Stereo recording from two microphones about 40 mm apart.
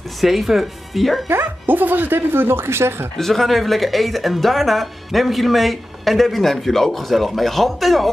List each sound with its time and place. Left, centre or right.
0.2 s speech: centre
1.3 s speech: right
3.2 s speech: centre